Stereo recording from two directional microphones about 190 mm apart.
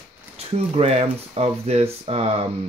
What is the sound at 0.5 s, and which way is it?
Speech, 30° right (ahead or behind).